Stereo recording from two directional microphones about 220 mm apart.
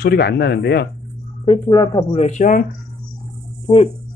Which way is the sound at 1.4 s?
25° left (ahead or behind).